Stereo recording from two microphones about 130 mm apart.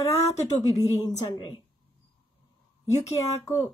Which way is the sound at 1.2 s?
35° left (ahead or behind).